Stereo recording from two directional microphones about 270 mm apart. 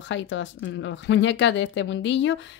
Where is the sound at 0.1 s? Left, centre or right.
Left.